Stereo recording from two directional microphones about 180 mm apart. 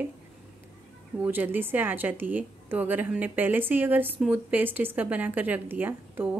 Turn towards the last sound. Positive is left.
turn(degrees=-10)  # may be behind; listen again after turning